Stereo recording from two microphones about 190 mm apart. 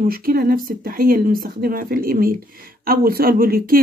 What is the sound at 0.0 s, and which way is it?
Speech, 50° right (ahead or behind).